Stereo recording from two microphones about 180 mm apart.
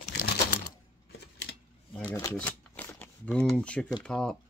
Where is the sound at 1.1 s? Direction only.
65° left (ahead or behind).